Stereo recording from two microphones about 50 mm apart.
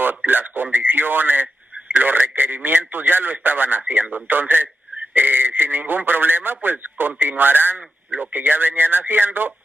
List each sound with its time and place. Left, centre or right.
0.0 s speech: right